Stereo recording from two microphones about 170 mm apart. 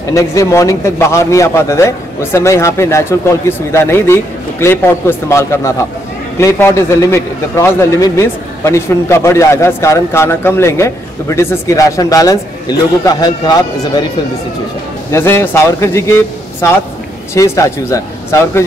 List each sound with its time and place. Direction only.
0.1 s a man's voice: 20° left (ahead or behind)
15.0 s a man's voice: 15° left (ahead or behind)